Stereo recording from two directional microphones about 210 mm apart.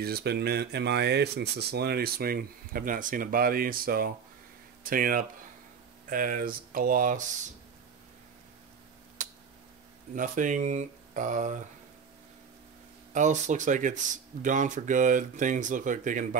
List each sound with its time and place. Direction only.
0.0 s speech: 50° right (ahead or behind)
10.1 s speech: 40° right (ahead or behind)
13.1 s speech: 35° right (ahead or behind)